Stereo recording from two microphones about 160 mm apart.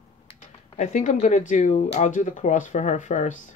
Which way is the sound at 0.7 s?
50° left (ahead or behind).